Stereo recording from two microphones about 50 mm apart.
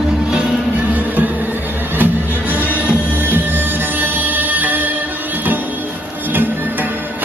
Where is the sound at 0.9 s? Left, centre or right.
Right.